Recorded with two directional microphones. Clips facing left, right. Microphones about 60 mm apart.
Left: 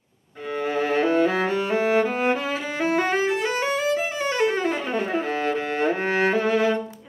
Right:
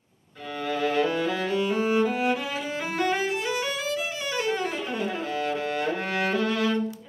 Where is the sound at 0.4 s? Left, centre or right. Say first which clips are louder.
Left 3 dB; left.